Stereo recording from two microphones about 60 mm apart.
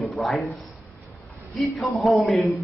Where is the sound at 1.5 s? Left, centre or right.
Centre.